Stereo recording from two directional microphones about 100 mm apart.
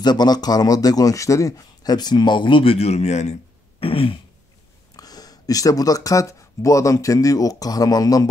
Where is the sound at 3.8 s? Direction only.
65° left (ahead or behind).